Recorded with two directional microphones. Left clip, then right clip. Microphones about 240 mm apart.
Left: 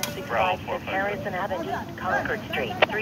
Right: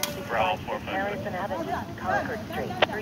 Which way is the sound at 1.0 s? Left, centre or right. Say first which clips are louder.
Left 3 dB; left.